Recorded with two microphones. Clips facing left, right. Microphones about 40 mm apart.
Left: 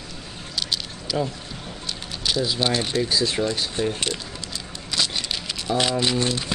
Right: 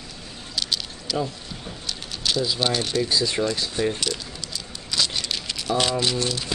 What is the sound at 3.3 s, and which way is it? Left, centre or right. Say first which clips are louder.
Speech: even; left.